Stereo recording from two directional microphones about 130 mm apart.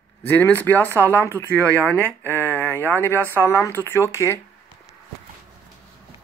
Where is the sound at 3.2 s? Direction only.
20° right (ahead or behind).